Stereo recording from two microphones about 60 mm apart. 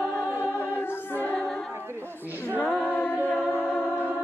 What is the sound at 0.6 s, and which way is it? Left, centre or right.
Choir, left.